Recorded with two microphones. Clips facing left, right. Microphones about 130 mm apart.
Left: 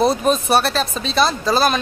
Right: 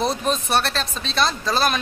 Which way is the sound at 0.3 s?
5° left (ahead or behind).